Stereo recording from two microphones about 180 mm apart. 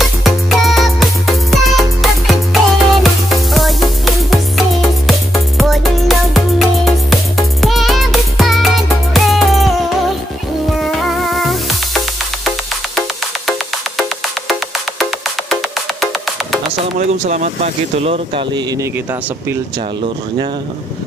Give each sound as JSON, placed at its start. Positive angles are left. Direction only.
{"t": 0.0, "sound": "music", "side_deg": 0}
{"t": 13.5, "sound": "music", "side_deg": 0}
{"t": 17.3, "sound": "speech", "side_deg": -40}